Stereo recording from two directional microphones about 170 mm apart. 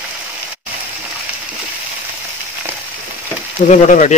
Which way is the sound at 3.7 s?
45° left (ahead or behind).